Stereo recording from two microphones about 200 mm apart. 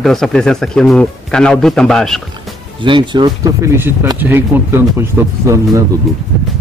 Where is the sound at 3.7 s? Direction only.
10° right (ahead or behind).